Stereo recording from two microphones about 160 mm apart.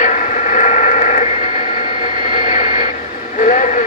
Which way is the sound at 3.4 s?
50° left (ahead or behind).